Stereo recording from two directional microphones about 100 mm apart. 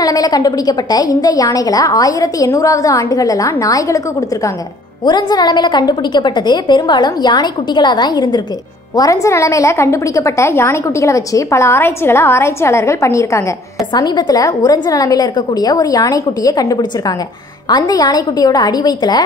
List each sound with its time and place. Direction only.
0.0 s a woman's voice: 40° left (ahead or behind)
5.0 s a woman's voice: 45° left (ahead or behind)
8.9 s a woman's voice: 35° left (ahead or behind)
13.9 s a woman's voice: 45° left (ahead or behind)